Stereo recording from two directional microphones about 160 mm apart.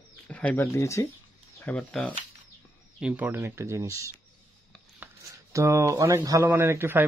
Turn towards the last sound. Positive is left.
turn(degrees=-15)  # may be behind; listen again after turning